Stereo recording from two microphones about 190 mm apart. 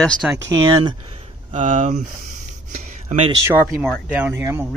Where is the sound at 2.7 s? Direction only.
35° right (ahead or behind).